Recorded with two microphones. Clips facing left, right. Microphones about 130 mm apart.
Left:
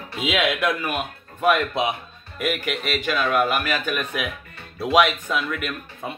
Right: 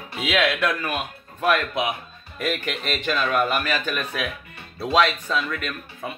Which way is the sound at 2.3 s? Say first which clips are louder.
Left 1 dB; 10° left (ahead or behind).